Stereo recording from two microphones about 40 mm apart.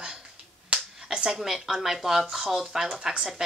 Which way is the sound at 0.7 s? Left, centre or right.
Right.